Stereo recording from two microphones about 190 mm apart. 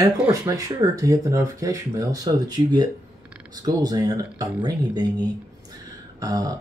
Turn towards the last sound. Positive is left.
turn(degrees=-20)  # may be behind; listen again after turning